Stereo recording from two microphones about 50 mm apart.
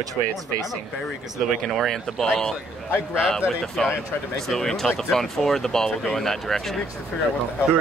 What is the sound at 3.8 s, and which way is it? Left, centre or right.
Speech, centre.